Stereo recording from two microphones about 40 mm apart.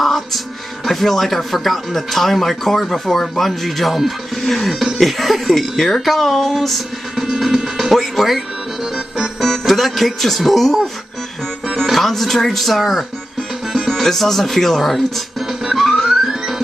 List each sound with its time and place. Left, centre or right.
0.0 s music: centre
0.8 s speech: centre
7.2 s music: centre
7.9 s speech: centre
8.9 s music: centre
9.4 s speech: centre
11.8 s speech: centre
13.7 s music: centre